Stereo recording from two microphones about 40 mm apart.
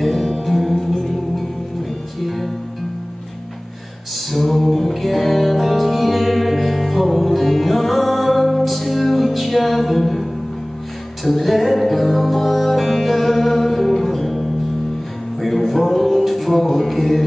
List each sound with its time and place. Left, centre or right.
0.0 s music: centre
4.3 s music: centre
11.2 s music: centre